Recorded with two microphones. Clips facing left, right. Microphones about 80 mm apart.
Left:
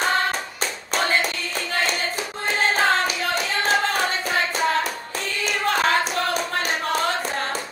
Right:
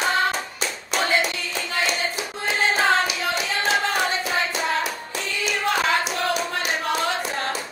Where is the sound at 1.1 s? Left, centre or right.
Left.